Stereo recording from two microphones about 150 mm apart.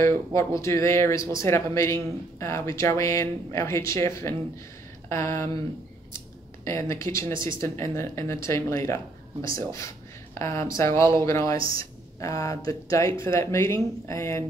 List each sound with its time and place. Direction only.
0.3 s speech: 20° left (ahead or behind)
6.6 s speech: 20° left (ahead or behind)
11.5 s speech: 35° right (ahead or behind)
11.8 s speech: 20° left (ahead or behind)